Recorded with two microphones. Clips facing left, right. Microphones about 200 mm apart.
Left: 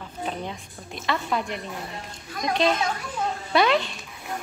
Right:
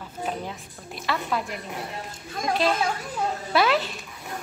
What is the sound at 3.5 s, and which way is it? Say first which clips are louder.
Speech: left 1 dB; 5° right (ahead or behind).